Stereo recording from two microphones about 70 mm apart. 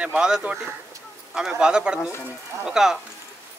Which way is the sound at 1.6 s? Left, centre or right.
Centre.